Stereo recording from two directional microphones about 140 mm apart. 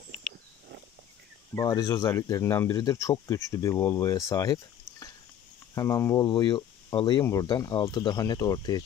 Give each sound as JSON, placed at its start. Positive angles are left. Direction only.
{"t": 1.5, "sound": "speech", "side_deg": 25}
{"t": 5.8, "sound": "speech", "side_deg": 20}